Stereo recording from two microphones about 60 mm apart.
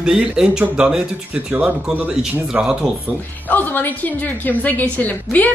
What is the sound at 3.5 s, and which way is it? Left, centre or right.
A woman's voice, left.